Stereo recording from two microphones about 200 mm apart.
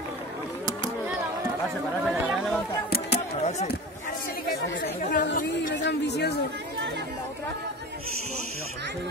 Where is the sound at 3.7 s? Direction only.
45° left (ahead or behind).